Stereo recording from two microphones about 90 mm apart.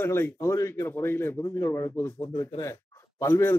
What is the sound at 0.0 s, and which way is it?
A man's voice, 25° left (ahead or behind).